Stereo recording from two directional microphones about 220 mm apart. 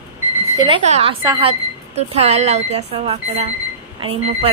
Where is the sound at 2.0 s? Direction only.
30° right (ahead or behind).